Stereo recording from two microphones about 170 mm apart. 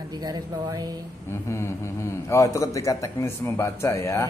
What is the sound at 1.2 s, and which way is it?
Speech, 15° left (ahead or behind).